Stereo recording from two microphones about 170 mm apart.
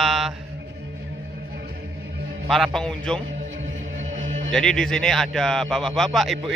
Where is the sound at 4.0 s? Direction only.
45° right (ahead or behind).